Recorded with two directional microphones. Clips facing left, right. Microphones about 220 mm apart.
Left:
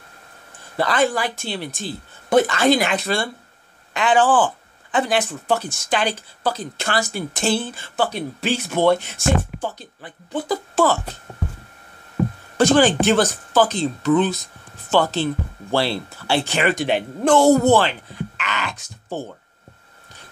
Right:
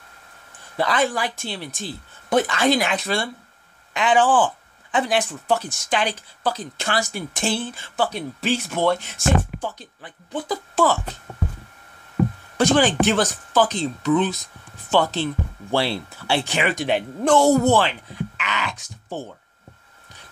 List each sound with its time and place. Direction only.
0.7 s speech: 5° left (ahead or behind)
12.5 s speech: 5° left (ahead or behind)